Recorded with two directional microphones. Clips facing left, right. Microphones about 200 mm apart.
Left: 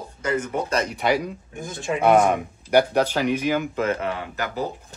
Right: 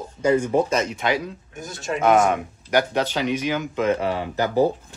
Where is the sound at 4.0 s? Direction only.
30° right (ahead or behind).